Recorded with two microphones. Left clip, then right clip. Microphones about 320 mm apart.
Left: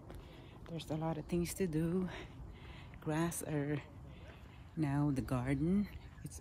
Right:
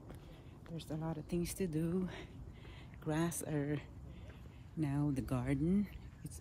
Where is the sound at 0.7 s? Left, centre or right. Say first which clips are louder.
Left 4 dB; centre.